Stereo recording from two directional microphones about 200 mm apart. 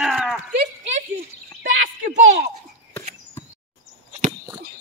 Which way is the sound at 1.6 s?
40° right (ahead or behind).